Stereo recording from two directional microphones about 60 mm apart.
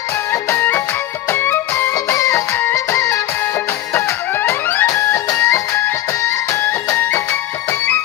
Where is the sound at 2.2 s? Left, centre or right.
Left.